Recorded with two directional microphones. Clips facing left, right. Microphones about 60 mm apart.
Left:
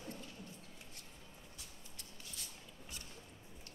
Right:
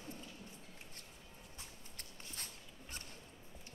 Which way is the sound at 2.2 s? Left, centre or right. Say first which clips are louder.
Right 1 dB; right.